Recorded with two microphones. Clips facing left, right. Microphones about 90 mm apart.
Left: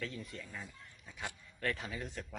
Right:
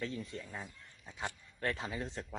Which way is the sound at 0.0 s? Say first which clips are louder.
Right 3 dB; 30° right (ahead or behind).